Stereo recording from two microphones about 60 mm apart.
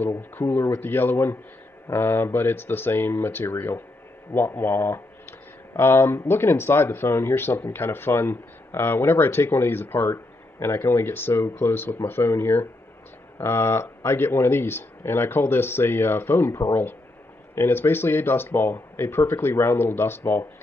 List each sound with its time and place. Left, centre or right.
0.4 s speech: left